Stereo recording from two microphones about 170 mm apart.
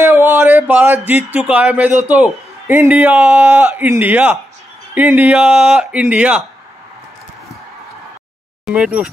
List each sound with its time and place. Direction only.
0.0 s a sound: 15° right (ahead or behind)
2.0 s a man's voice: 10° right (ahead or behind)
8.6 s speech: 5° right (ahead or behind)